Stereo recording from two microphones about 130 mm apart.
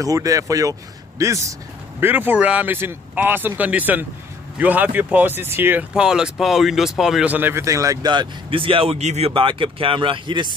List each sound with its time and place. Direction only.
0.0 s a man's voice: 25° right (ahead or behind); by 7.3 s 5° right (ahead or behind)
7.3 s speech: 15° right (ahead or behind); by 9.3 s 60° right (ahead or behind)
9.3 s speech: 40° right (ahead or behind)